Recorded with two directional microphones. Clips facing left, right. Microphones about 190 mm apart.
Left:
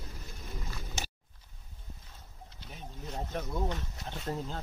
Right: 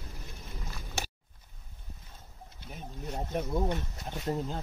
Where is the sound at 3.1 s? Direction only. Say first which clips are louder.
Right 4 dB; 10° right (ahead or behind).